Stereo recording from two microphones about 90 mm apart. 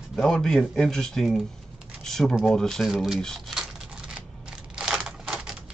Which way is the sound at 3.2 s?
5° left (ahead or behind).